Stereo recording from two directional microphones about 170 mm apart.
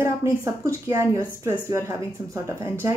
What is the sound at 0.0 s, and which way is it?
Speech, 15° right (ahead or behind).